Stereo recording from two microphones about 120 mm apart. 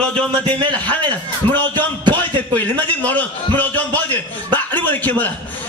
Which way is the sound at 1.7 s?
40° right (ahead or behind).